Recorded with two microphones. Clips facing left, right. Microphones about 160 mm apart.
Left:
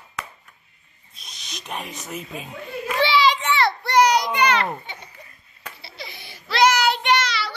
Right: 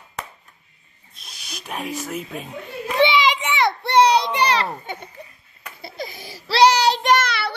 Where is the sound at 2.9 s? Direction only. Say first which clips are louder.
Right 2 dB; 20° right (ahead or behind).